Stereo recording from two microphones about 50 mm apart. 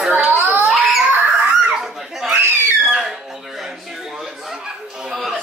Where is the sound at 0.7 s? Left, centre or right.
Centre.